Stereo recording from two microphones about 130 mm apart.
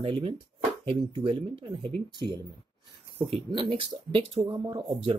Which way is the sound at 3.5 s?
40° right (ahead or behind).